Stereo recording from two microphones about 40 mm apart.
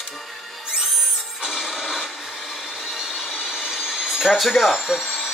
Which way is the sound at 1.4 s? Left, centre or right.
Centre.